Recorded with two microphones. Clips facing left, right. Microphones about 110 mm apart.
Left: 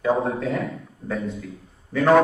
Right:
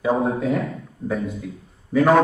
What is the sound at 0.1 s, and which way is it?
A man's voice, centre (ahead or behind).